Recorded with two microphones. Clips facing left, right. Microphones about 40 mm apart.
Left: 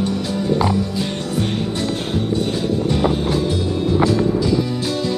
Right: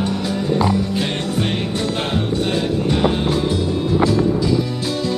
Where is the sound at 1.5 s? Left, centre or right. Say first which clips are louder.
Even; right.